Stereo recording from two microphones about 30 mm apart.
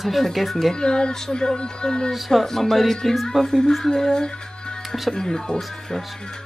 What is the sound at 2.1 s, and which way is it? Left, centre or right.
Speech, centre.